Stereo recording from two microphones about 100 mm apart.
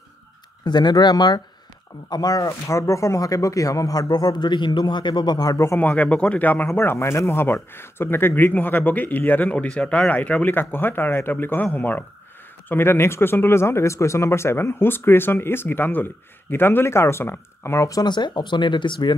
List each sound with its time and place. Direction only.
0.7 s speech: 45° left (ahead or behind)
5.8 s speech: 15° left (ahead or behind); by 19.1 s 50° left (ahead or behind)